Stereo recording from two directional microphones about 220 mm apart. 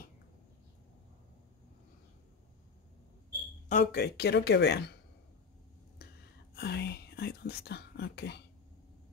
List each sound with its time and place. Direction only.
3.8 s speech: 50° left (ahead or behind)
6.5 s speech: 45° left (ahead or behind)